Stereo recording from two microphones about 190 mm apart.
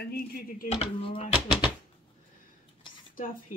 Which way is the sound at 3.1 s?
45° left (ahead or behind).